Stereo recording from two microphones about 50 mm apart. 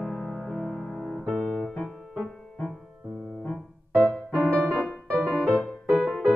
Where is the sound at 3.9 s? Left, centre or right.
Left.